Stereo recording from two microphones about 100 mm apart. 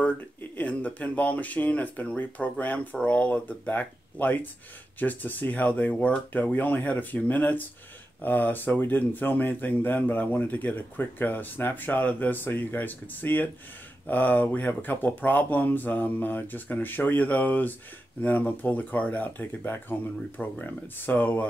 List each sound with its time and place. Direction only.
0.0 s speech: 15° left (ahead or behind)